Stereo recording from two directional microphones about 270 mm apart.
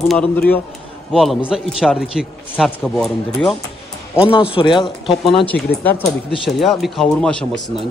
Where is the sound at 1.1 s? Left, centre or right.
Centre.